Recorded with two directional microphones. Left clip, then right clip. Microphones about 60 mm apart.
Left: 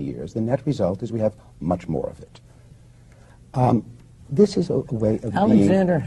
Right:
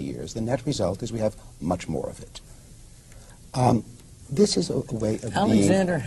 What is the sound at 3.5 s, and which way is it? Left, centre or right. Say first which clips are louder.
Speech: left 2 dB; centre.